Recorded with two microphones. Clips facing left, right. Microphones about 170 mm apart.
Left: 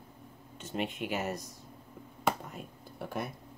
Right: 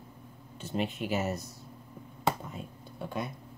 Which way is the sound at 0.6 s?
35° right (ahead or behind).